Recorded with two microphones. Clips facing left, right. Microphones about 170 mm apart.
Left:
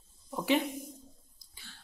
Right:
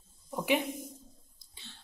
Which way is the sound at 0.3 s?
15° right (ahead or behind).